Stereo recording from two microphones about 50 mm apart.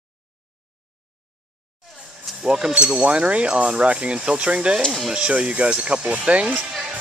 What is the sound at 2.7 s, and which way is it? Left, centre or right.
Speech, right.